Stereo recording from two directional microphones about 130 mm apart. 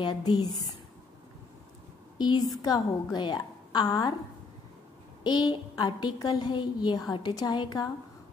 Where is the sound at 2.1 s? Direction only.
30° left (ahead or behind).